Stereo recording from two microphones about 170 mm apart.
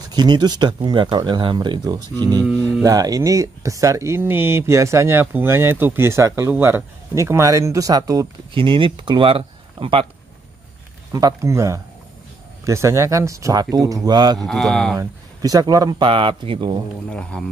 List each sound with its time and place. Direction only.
0.1 s speech: 25° right (ahead or behind)
11.1 s speech: 20° right (ahead or behind)
14.4 s speech: centre (ahead or behind)
15.0 s speech: 20° right (ahead or behind)
17.1 s music: 5° left (ahead or behind)